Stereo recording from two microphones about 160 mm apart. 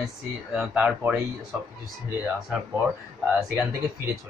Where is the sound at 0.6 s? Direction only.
10° right (ahead or behind).